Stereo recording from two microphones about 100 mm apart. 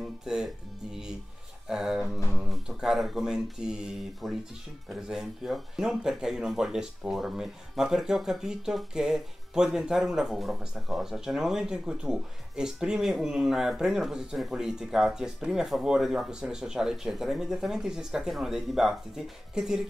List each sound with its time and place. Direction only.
0.2 s speech: 5° right (ahead or behind)
1.7 s a sound: 5° right (ahead or behind)
2.3 s speech: 5° right (ahead or behind)